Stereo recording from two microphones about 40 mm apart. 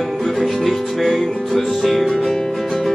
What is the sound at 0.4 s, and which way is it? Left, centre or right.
Music, centre.